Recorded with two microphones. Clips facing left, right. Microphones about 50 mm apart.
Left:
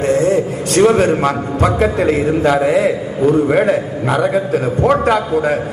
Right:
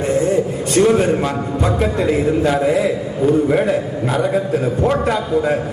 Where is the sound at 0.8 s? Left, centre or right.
Left.